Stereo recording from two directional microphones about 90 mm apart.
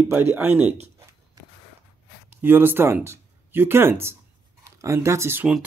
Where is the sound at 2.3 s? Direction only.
25° right (ahead or behind).